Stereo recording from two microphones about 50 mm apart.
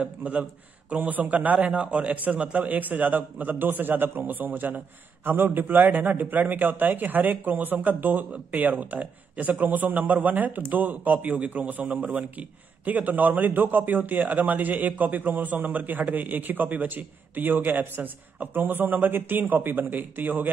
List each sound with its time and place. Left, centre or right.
0.0 s a man's voice: right